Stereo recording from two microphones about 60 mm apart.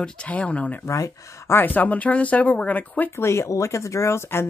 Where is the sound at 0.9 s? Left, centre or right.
Left.